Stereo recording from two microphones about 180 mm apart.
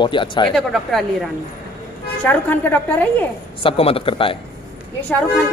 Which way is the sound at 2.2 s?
10° left (ahead or behind).